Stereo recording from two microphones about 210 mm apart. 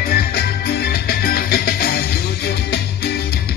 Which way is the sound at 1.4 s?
45° left (ahead or behind).